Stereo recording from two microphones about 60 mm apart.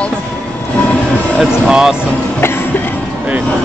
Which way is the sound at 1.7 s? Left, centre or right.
Centre.